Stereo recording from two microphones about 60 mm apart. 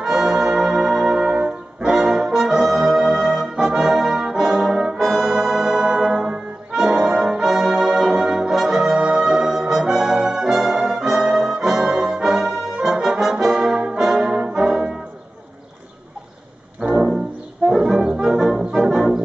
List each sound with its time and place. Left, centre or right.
0.0 s brass instrument: centre
16.9 s music: centre
17.6 s brass instrument: centre